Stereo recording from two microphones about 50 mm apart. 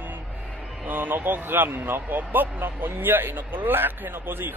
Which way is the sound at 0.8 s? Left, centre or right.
Right.